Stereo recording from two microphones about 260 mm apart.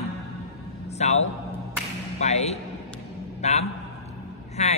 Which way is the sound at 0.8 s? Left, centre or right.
Left.